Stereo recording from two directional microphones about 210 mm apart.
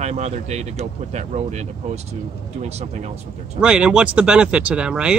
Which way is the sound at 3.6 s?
5° right (ahead or behind).